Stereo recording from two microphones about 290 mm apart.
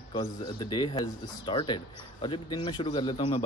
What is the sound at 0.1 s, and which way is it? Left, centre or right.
Speech, centre.